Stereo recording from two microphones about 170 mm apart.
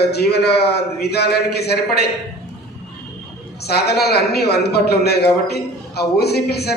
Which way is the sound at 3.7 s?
70° left (ahead or behind).